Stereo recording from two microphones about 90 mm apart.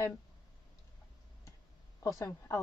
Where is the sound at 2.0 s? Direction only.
35° left (ahead or behind).